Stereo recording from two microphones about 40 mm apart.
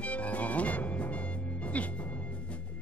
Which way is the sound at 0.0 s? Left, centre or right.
Left.